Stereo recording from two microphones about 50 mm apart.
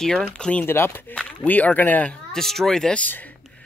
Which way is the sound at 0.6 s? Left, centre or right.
Left.